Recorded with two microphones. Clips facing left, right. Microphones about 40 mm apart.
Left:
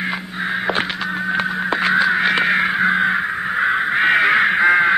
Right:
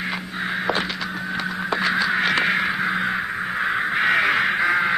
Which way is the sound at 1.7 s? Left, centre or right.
Left.